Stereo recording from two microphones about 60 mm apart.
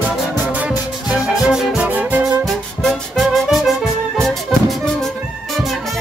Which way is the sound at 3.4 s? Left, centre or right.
Centre.